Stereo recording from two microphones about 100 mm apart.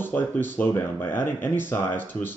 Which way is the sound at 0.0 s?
20° left (ahead or behind).